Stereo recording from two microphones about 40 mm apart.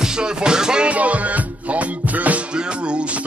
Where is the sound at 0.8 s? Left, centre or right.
Right.